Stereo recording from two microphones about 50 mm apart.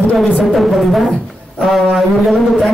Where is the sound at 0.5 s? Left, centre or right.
Centre.